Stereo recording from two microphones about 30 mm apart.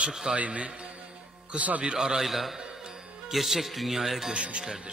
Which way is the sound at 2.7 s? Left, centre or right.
Right.